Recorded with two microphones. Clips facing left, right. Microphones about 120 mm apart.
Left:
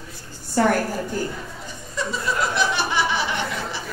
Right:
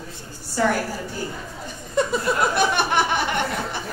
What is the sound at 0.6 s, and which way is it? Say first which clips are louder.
Speech: left 2 dB; 50° left (ahead or behind).